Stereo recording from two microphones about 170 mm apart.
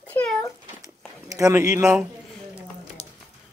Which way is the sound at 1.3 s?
15° right (ahead or behind).